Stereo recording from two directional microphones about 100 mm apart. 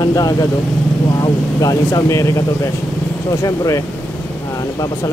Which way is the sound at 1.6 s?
35° left (ahead or behind).